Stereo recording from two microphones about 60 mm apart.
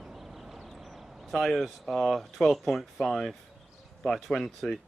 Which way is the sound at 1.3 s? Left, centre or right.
Centre.